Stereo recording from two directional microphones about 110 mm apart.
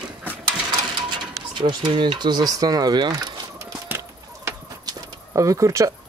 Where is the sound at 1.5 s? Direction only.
45° right (ahead or behind).